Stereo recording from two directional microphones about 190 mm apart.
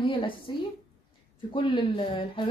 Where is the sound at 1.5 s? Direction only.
25° left (ahead or behind).